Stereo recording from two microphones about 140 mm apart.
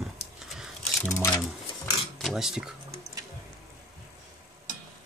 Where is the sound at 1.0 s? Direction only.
20° left (ahead or behind).